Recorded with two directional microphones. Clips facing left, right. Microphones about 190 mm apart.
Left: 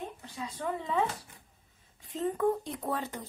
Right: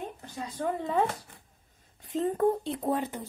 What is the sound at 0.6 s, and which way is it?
Speech, 40° right (ahead or behind).